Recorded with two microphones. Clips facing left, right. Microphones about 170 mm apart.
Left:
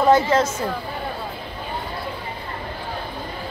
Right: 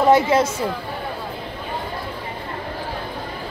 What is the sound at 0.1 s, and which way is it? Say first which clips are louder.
Speech: right 1 dB; 10° right (ahead or behind).